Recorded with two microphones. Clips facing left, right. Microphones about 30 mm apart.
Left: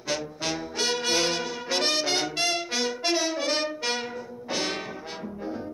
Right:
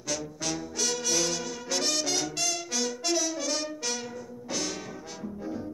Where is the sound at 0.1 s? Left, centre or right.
Left.